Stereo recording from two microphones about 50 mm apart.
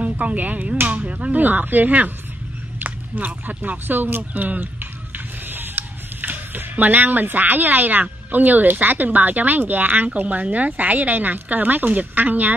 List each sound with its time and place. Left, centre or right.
0.0 s speech: right